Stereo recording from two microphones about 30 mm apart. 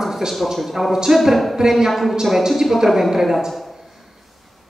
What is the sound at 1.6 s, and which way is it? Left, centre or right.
Speech, centre.